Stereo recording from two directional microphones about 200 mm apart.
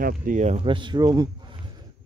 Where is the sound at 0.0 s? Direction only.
40° right (ahead or behind).